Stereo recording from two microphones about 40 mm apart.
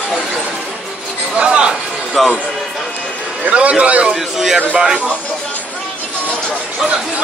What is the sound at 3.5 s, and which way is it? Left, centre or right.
Speech, right.